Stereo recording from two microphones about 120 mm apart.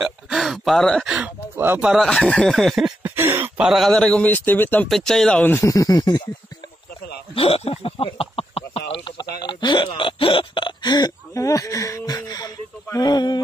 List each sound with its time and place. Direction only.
0.0 s a sound: centre (ahead or behind)
1.1 s speech: 15° right (ahead or behind)
1.9 s speech: 5° left (ahead or behind)
3.0 s a sound: 15° right (ahead or behind)
3.5 s speech: 5° right (ahead or behind); by 4.8 s 15° left (ahead or behind)
4.8 s speech: centre (ahead or behind)
5.6 s speech: 25° left (ahead or behind)
7.3 s a sound: 55° left (ahead or behind)
9.9 s hiccup: 45° left (ahead or behind)